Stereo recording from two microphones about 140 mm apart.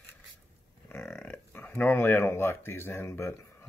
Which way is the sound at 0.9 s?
15° left (ahead or behind).